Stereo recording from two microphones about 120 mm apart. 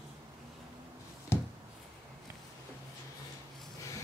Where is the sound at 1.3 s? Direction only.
20° left (ahead or behind).